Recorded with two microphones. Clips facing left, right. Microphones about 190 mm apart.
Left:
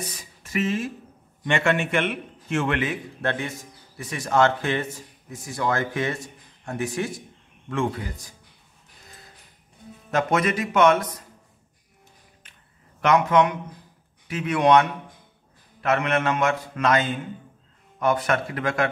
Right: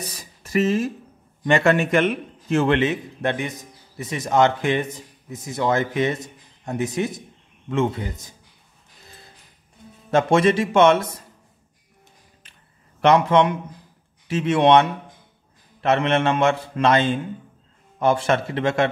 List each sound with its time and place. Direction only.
0.0 s a sound: 35° right (ahead or behind)
1.4 s a man's voice: 40° right (ahead or behind); by 8.4 s 25° right (ahead or behind)
10.1 s a man's voice: 30° right (ahead or behind)
13.0 s a man's voice: 30° right (ahead or behind)